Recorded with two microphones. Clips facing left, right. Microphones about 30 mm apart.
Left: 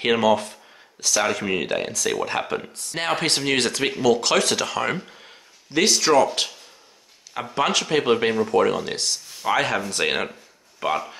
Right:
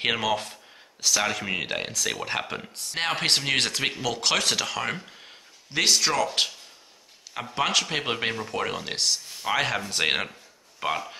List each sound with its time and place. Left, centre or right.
0.0 s speech: centre
7.5 s speech: centre
10.8 s a man's voice: centre